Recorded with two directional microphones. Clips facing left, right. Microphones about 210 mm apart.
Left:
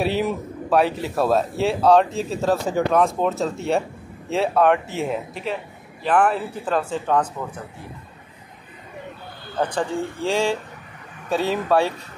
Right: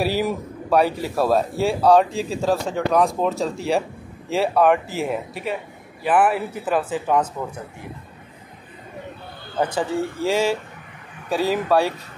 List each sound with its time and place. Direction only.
0.0 s a man's voice: centre (ahead or behind)
9.6 s a man's voice: 5° right (ahead or behind)